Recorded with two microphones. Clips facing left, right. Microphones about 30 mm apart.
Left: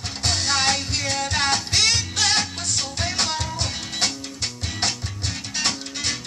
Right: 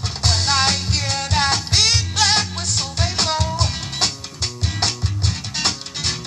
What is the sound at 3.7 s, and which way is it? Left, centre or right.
Music, right.